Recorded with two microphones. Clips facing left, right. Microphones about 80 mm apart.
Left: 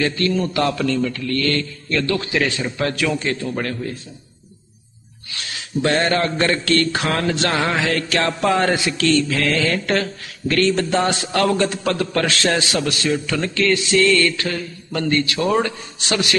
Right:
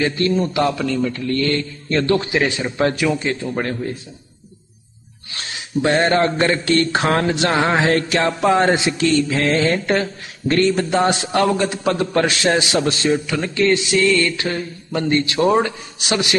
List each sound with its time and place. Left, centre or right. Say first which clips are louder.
0.0 s a man's voice: right 2 dB; right
5.3 s a sound: right 1 dB; right
5.8 s a man's voice: right 2 dB; right